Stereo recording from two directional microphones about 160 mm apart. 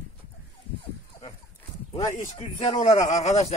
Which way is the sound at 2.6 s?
40° left (ahead or behind).